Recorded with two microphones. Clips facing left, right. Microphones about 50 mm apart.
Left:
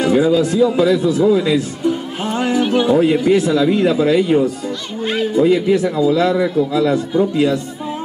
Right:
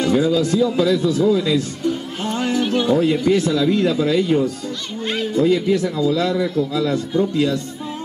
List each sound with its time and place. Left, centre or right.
0.0 s speech: centre
3.0 s a man's voice: left